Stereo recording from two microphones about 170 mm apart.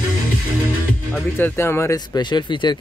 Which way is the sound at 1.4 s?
10° left (ahead or behind).